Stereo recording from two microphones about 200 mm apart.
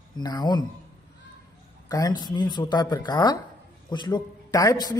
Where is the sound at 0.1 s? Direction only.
20° left (ahead or behind).